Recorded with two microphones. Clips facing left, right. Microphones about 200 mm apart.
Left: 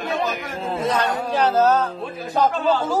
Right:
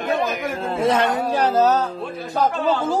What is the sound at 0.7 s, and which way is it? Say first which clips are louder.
Speech: right 3 dB; 25° right (ahead or behind).